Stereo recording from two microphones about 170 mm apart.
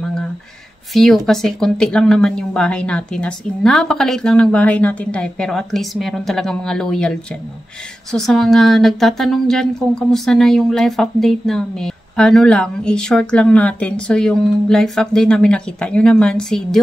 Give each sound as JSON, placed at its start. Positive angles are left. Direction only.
{"t": 0.9, "sound": "a woman's voice", "side_deg": 0}